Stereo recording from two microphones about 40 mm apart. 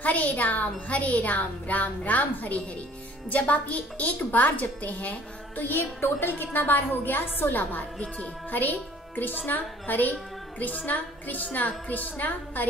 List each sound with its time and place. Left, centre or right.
0.0 s speech: left
5.6 s a woman's voice: left
9.5 s music: left